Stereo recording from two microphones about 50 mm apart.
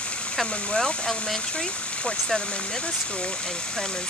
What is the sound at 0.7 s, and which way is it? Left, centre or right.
Speech, centre.